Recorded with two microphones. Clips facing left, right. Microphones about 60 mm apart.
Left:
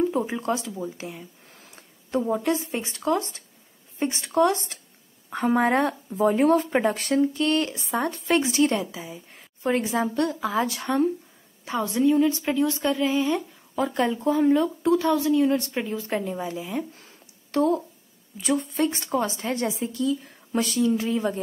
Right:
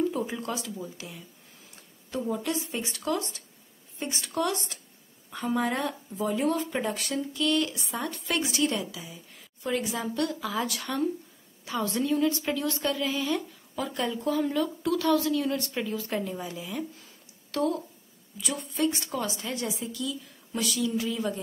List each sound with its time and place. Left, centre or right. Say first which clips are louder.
0.1 s a woman's voice: left 6 dB; left
11.8 s a woman's voice: left 6 dB; centre; by 21.4 s left